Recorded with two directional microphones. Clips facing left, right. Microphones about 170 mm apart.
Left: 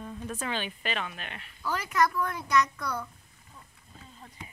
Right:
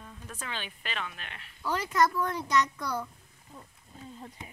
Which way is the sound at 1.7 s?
25° right (ahead or behind).